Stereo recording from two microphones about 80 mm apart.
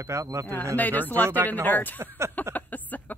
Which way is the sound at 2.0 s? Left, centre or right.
Right.